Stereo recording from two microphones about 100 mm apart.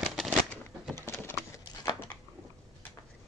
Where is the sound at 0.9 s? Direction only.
20° left (ahead or behind).